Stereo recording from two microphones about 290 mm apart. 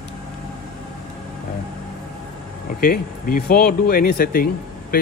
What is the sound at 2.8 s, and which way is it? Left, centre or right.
Speech, left.